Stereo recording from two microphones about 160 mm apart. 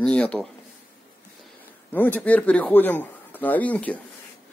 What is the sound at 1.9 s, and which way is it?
Speech, 10° left (ahead or behind).